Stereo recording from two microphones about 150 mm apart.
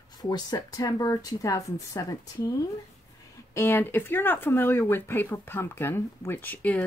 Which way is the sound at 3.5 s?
15° left (ahead or behind).